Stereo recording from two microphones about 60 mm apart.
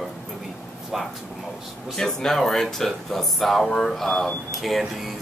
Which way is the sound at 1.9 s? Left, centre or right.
Centre.